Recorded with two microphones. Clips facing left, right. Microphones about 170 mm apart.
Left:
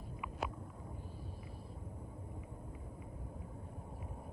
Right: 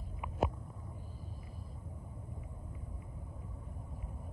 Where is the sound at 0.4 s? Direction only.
45° right (ahead or behind).